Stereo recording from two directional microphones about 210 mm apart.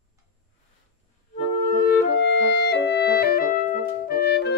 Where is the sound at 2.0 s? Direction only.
55° left (ahead or behind).